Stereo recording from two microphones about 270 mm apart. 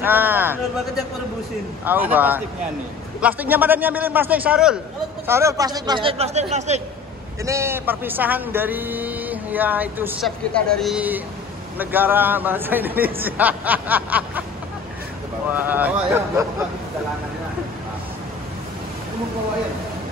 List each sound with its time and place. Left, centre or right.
0.0 s a sound: centre
1.9 s speech: centre; by 6.8 s right
7.4 s speech: centre
15.5 s speech: centre